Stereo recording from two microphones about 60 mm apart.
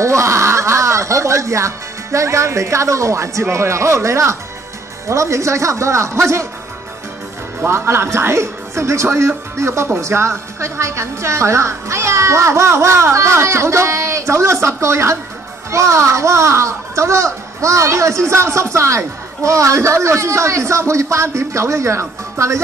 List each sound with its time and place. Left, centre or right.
0.0 s a child's voice: right
7.6 s a child's voice: right